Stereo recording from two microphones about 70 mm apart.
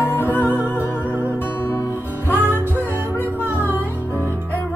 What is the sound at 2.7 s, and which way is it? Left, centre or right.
Music, right.